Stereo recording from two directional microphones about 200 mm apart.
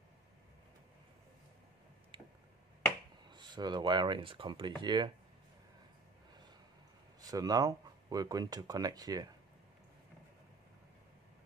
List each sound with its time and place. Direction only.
2.1 s a sound: 25° right (ahead or behind)
3.3 s speech: 20° right (ahead or behind)
7.2 s speech: 20° right (ahead or behind)